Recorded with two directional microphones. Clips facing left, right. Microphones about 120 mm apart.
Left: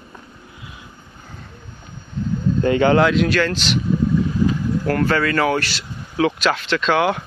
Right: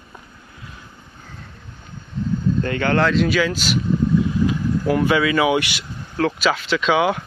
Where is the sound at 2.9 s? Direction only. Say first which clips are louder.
Left 2 dB; 5° left (ahead or behind).